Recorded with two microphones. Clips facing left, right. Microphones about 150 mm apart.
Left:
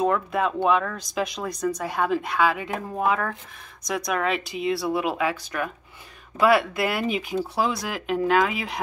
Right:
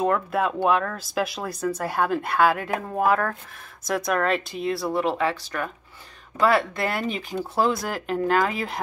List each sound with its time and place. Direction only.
0.0 s speech: centre (ahead or behind)